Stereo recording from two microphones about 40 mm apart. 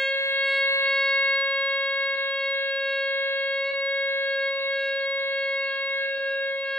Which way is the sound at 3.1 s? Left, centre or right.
Left.